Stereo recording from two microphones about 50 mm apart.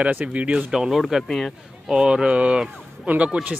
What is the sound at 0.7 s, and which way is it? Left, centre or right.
Speech, centre.